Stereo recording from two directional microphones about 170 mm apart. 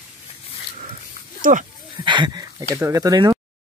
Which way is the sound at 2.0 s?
25° right (ahead or behind).